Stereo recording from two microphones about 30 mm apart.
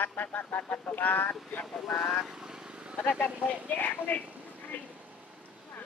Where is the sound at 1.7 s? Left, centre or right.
Centre.